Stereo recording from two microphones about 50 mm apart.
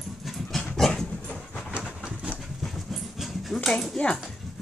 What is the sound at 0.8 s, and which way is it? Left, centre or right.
Dog, centre.